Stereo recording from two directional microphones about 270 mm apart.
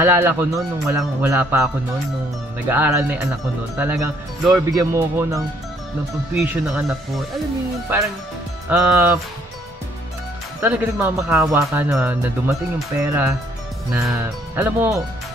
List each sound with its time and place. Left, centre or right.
0.0 s speech: centre
2.7 s speech: centre
8.6 s speech: centre
10.6 s speech: centre